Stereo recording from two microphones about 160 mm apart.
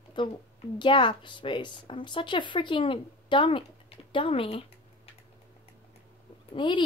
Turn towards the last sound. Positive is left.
turn(degrees=30)  # may be behind; listen again after turning